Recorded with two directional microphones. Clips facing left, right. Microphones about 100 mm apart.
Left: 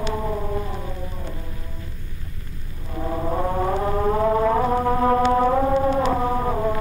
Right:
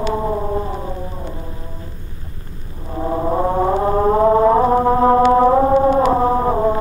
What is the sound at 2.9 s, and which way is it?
Music, 30° right (ahead or behind).